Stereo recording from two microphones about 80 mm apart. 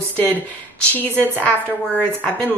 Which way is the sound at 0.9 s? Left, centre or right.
Left.